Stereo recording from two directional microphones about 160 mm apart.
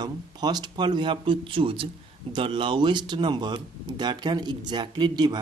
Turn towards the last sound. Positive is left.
turn(degrees=-25)  # may be behind; listen again after turning